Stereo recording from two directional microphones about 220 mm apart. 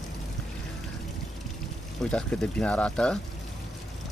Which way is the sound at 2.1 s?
5° left (ahead or behind).